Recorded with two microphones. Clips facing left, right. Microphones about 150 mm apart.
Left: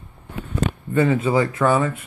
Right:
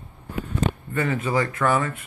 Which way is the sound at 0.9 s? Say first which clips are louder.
Left 7 dB; 20° left (ahead or behind).